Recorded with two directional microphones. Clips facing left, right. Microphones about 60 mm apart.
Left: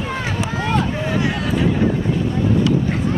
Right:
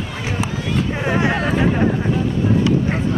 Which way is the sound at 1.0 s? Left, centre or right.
Right.